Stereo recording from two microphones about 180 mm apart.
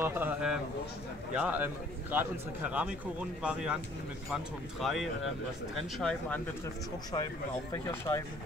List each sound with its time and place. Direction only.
0.0 s speech: 10° right (ahead or behind)
7.7 s speech: 15° left (ahead or behind)